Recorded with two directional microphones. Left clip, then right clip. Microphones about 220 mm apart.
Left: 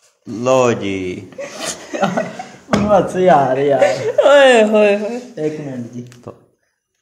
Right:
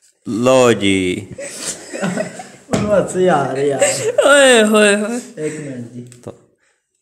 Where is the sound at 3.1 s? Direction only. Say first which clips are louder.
Left 3 dB; 15° right (ahead or behind); by 5.0 s 35° right (ahead or behind).